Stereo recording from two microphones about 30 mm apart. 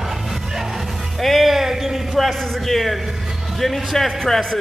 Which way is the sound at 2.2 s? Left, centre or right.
Centre.